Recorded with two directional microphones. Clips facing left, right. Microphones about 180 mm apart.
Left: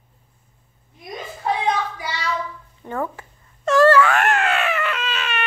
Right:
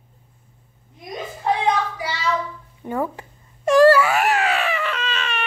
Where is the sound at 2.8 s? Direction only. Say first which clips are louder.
Right 2 dB; 10° right (ahead or behind).